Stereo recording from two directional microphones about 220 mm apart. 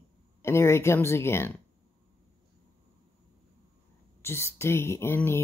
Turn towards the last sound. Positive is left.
turn(degrees=10)  # may be behind; listen again after turning